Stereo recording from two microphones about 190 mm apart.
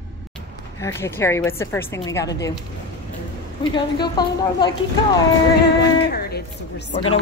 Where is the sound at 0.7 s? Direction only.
15° left (ahead or behind).